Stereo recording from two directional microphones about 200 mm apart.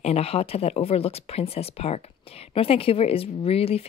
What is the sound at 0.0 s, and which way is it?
Speech, 30° left (ahead or behind).